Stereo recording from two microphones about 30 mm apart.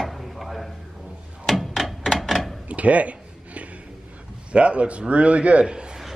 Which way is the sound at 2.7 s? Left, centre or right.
Right.